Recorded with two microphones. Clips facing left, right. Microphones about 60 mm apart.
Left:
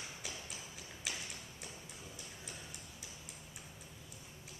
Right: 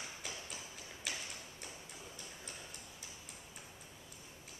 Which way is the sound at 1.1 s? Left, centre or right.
Centre.